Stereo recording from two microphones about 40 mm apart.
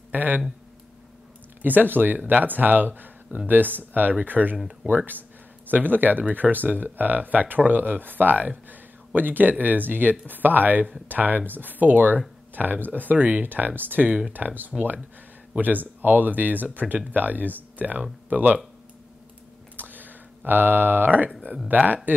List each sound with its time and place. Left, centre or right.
0.1 s speech: right
1.6 s speech: right
3.3 s speech: left
3.7 s speech: right
19.8 s a sound: right
21.7 s speech: right